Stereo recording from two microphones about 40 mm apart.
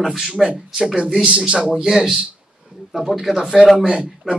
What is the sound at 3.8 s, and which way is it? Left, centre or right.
Speech, right.